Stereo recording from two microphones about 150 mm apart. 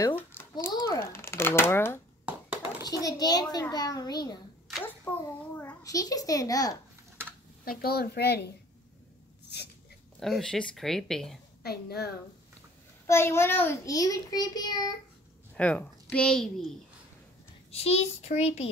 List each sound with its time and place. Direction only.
0.0 s a sound: 15° left (ahead or behind)
2.9 s a child's voice: 25° left (ahead or behind)
5.1 s a child's voice: 15° left (ahead or behind)
7.6 s a woman's voice: 85° left
9.5 s a sound: 90° left
10.2 s speech: centre (ahead or behind)
11.6 s a woman's voice: 90° left
13.0 s a child's voice: 20° left (ahead or behind)
15.5 s a woman's voice: 10° left (ahead or behind)
17.6 s a child's voice: 45° left (ahead or behind)